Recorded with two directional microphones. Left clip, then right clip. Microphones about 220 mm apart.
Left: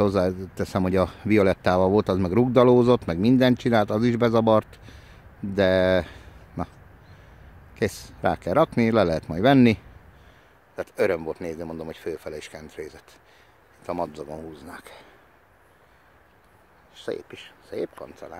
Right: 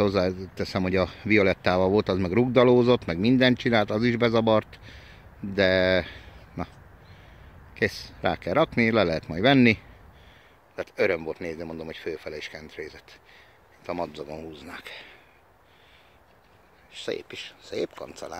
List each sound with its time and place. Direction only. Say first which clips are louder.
0.0 s speech: left 2 dB; 10° left (ahead or behind)
7.7 s speech: even; 15° left (ahead or behind)
16.9 s speech: even; 5° left (ahead or behind)
18.0 s speech: right 1 dB; 15° right (ahead or behind)